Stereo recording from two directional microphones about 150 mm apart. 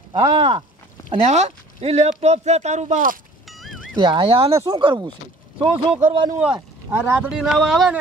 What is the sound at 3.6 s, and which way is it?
Music, centre (ahead or behind).